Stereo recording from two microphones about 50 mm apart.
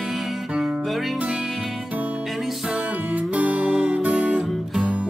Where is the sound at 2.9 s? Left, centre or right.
Right.